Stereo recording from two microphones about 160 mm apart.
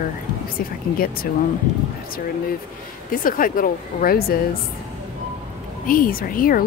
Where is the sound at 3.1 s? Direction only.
60° left (ahead or behind).